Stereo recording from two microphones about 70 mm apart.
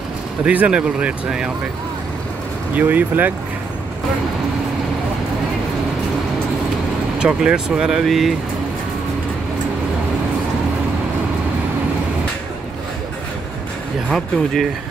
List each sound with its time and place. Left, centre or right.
0.5 s speech: centre
2.8 s speech: right
7.2 s speech: centre
14.1 s speech: centre